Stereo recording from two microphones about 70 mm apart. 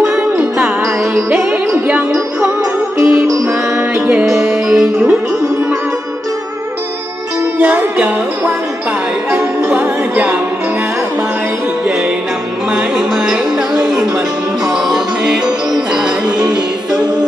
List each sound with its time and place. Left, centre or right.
0.4 s music: right
1.1 s music: centre
3.0 s music: centre
3.4 s music: right
4.6 s music: centre
7.6 s music: right
9.3 s music: right
9.7 s music: right
12.7 s music: centre